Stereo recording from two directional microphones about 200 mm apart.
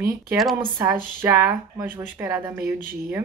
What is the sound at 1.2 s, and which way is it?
Speech, 10° right (ahead or behind).